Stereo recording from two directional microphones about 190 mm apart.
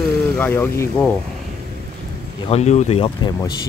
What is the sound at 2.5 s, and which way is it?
Speech, 35° left (ahead or behind).